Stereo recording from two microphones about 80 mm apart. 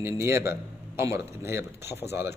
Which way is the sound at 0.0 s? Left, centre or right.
Right.